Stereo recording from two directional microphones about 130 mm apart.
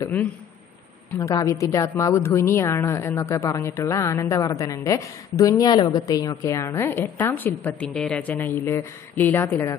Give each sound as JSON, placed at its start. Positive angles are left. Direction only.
{"t": 1.2, "sound": "a woman's voice", "side_deg": 25}